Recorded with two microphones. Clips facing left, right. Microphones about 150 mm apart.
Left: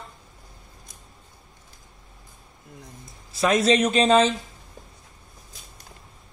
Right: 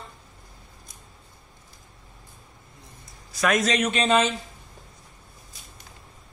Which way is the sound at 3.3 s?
25° left (ahead or behind).